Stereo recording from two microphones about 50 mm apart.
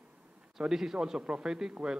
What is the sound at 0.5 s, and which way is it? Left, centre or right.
A man's voice, centre.